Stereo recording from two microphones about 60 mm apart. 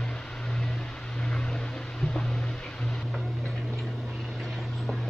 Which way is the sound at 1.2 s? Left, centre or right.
Centre.